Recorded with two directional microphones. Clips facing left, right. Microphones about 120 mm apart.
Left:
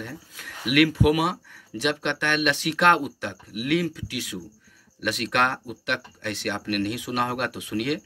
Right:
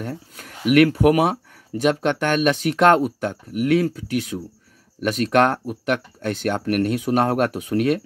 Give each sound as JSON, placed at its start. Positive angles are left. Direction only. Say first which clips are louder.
{"t": 0.0, "sound": "speech", "louder": "right 6 dB", "side_deg": -40}